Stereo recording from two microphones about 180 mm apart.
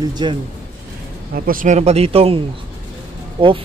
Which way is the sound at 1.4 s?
50° right (ahead or behind).